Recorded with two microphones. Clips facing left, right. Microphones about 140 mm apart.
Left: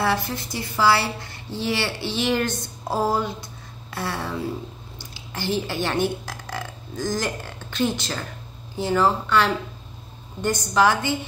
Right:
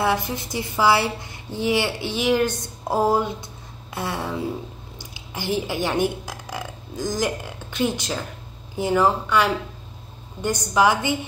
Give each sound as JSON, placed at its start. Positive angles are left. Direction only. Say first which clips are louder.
{"t": 0.0, "sound": "a woman's voice", "louder": "right 1 dB", "side_deg": -15}